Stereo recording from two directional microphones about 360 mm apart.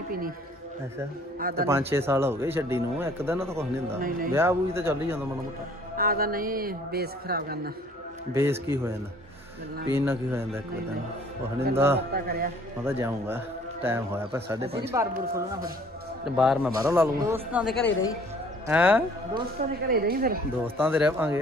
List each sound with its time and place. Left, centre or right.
1.4 s a man's voice: right
1.7 s speech: centre
5.9 s a man's voice: right
8.3 s speech: centre
9.9 s speech: centre
11.7 s speech: centre
12.1 s a man's voice: right
12.8 s a man's voice: centre
18.7 s a man's voice: centre
19.9 s a man's voice: right
20.6 s a man's voice: centre